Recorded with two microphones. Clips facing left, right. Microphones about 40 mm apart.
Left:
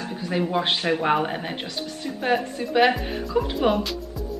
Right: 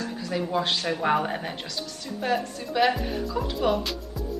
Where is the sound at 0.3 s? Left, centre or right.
Left.